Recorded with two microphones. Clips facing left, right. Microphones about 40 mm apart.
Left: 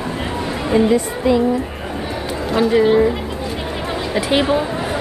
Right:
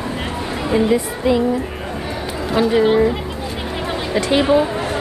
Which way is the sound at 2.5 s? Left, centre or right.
Centre.